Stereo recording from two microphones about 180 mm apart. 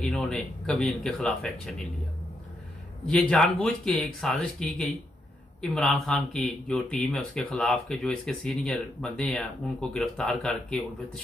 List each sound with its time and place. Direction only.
0.0 s speech: 5° left (ahead or behind)
3.1 s speech: 5° left (ahead or behind)